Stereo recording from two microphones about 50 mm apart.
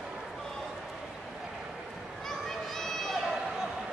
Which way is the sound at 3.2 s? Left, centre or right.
Centre.